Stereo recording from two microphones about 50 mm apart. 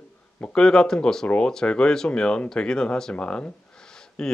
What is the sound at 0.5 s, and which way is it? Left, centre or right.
Speech, centre.